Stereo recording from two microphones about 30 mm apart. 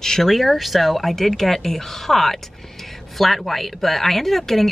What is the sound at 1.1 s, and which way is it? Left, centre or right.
A woman's voice, centre.